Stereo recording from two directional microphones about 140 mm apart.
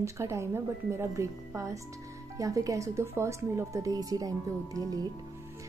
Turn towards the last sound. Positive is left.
turn(degrees=-25)  # may be behind; listen again after turning